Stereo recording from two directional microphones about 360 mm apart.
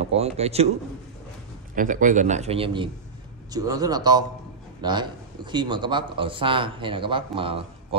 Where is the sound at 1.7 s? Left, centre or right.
Right.